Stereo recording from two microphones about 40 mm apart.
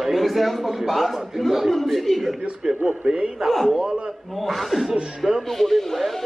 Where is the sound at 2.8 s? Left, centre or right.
Right.